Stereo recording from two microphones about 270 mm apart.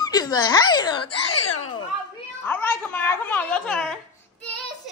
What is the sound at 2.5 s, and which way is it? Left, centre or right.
Speech, centre.